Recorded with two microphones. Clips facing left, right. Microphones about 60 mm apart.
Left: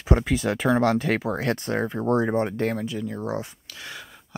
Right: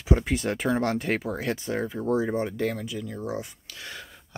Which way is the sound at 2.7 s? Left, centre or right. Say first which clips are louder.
Left 4 dB; left.